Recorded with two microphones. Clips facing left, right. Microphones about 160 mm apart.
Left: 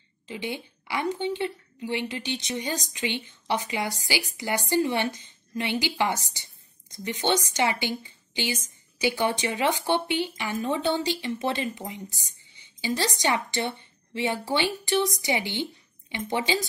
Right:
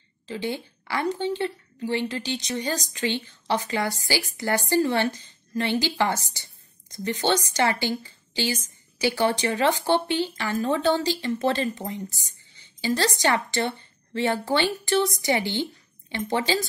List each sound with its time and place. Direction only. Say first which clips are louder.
0.3 s a woman's voice: right 3 dB; 15° left (ahead or behind)